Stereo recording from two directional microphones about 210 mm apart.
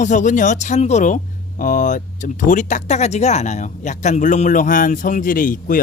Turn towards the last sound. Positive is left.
turn(degrees=40)  # may be behind; listen again after turning